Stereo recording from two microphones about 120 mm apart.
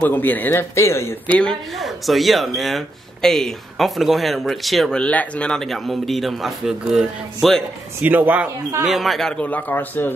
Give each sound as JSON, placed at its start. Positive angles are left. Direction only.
{"t": 0.0, "sound": "speech", "side_deg": 15}
{"t": 1.3, "sound": "speech", "side_deg": 5}
{"t": 8.0, "sound": "speech", "side_deg": -15}
{"t": 8.8, "sound": "speech", "side_deg": 0}
{"t": 9.5, "sound": "speech", "side_deg": 15}